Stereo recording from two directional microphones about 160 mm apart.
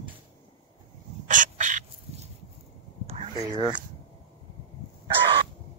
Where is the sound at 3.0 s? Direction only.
40° right (ahead or behind).